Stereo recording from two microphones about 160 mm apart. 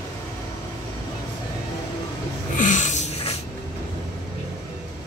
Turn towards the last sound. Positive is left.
turn(degrees=50)  # may be behind; listen again after turning